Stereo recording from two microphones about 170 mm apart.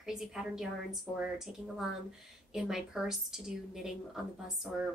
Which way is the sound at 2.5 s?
5° right (ahead or behind).